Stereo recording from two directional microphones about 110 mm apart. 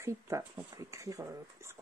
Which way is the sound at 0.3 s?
30° right (ahead or behind).